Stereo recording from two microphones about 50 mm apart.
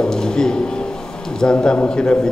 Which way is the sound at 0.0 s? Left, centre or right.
Centre.